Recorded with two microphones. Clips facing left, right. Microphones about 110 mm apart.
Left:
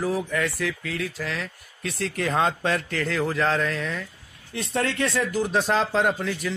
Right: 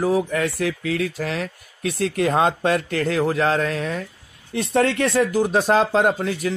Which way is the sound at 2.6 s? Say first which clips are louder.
Right 5 dB; 45° right (ahead or behind).